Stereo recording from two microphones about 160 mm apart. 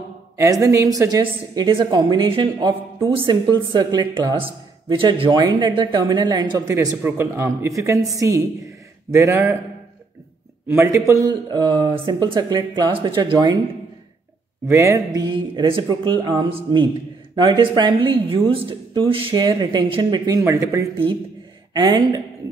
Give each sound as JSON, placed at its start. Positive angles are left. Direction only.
{"t": 0.4, "sound": "speech", "side_deg": -20}
{"t": 7.0, "sound": "speech", "side_deg": -15}
{"t": 10.7, "sound": "speech", "side_deg": -15}
{"t": 14.7, "sound": "speech", "side_deg": -20}